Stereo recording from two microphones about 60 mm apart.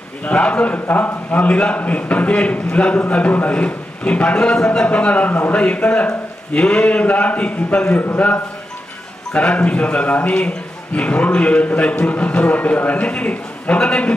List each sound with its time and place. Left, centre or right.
0.2 s a man's voice: left
0.7 s a man's voice: left; by 14.1 s centre